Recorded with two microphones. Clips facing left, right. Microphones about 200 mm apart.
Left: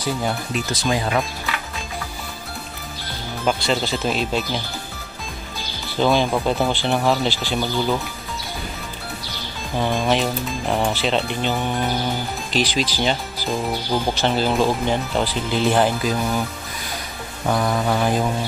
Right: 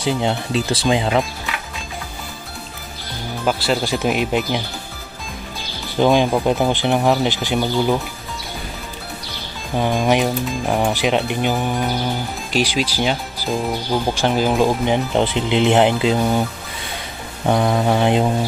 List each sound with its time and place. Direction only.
0.0 s speech: 25° right (ahead or behind)
3.4 s speech: 5° right (ahead or behind)
5.9 s speech: 15° right (ahead or behind)
9.8 s speech: 15° right (ahead or behind)
17.5 s speech: 25° right (ahead or behind)